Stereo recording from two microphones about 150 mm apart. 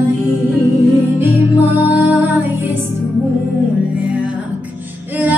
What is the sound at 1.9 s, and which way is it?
Music, 10° right (ahead or behind).